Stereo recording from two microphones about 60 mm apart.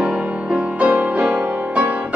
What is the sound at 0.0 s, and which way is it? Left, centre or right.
Music, centre.